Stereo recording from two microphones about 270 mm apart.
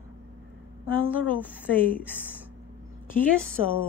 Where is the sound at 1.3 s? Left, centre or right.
Centre.